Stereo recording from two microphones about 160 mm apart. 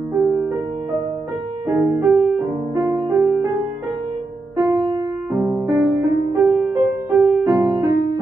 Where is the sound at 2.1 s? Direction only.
5° right (ahead or behind).